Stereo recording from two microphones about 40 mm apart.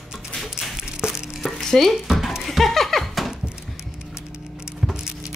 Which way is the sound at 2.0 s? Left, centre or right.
Centre.